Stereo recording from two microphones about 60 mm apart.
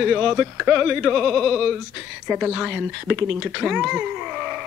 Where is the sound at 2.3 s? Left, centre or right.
Centre.